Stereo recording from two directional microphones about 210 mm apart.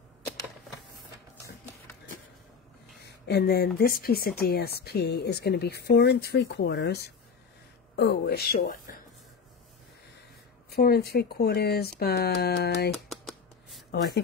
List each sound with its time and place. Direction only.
3.1 s speech: 50° left (ahead or behind)
10.7 s speech: 45° left (ahead or behind)
13.1 s shuffling cards: centre (ahead or behind)